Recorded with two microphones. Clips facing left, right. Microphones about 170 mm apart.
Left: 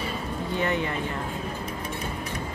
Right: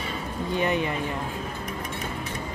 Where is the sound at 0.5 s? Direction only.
15° right (ahead or behind).